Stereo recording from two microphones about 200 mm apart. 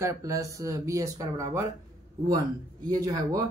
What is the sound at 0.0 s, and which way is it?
Speech, 15° right (ahead or behind).